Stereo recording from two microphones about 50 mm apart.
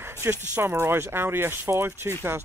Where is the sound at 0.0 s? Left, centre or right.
Right.